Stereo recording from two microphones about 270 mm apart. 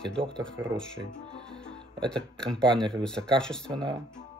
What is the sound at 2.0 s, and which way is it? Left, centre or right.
Speech, centre.